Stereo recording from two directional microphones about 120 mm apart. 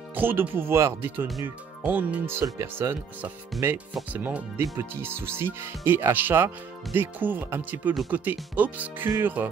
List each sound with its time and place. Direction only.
0.1 s speech: 15° right (ahead or behind)